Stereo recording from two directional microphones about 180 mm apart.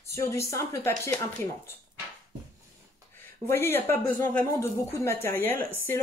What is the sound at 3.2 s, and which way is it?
Speech, 10° left (ahead or behind).